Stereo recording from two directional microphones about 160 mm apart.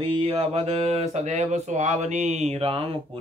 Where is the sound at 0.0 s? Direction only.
35° right (ahead or behind).